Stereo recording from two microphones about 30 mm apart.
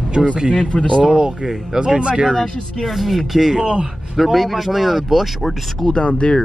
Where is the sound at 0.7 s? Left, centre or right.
Left.